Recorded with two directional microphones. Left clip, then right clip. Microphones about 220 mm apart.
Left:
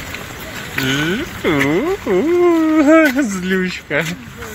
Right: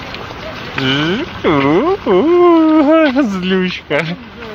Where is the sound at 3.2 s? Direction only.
Centre (ahead or behind).